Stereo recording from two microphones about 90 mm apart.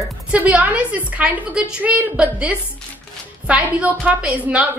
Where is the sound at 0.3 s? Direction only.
15° right (ahead or behind).